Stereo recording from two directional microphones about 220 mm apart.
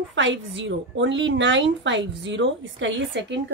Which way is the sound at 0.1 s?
55° right (ahead or behind).